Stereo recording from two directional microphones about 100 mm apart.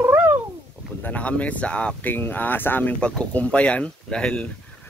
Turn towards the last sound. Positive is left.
turn(degrees=10)  # may be behind; listen again after turning